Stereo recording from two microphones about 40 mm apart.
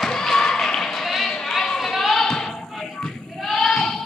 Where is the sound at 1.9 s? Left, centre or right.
Centre.